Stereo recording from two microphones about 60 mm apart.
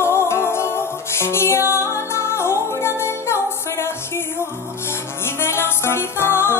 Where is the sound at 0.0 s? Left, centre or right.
Left.